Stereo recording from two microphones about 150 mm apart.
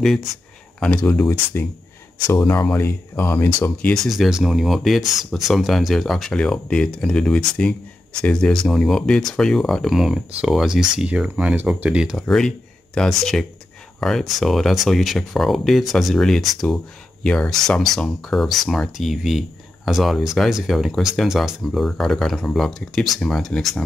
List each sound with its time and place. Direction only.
0.0 s speech: centre (ahead or behind)